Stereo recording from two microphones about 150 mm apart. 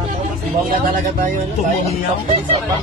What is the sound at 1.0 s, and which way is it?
Speech, 60° right (ahead or behind).